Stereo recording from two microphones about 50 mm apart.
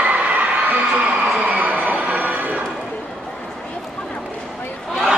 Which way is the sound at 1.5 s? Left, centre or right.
Right.